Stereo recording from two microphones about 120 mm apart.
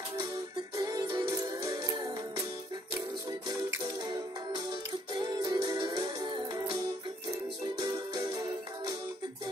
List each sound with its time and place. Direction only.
0.7 s music: 30° right (ahead or behind)
5.1 s music: 35° right (ahead or behind)